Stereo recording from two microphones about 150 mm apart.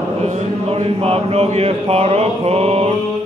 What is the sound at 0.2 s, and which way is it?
A man's voice, 45° right (ahead or behind).